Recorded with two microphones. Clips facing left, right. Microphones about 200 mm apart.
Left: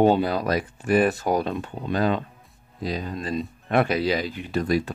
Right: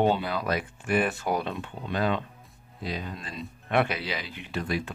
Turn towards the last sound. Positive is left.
turn(degrees=40)  # may be behind; listen again after turning